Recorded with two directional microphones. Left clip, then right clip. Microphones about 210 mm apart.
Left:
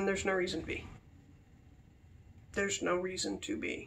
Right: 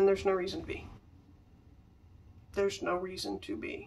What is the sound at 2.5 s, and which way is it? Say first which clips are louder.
Speech: right 1 dB; centre (ahead or behind).